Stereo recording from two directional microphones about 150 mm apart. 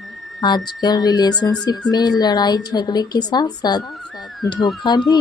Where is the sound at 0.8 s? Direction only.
25° left (ahead or behind).